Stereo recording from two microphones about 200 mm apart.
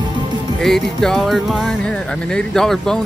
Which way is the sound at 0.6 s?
Centre (ahead or behind).